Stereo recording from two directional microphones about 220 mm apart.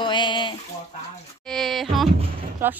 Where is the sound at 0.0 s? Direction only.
20° left (ahead or behind).